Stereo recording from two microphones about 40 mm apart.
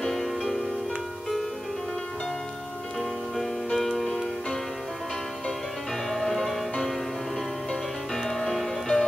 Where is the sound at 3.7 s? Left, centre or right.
Centre.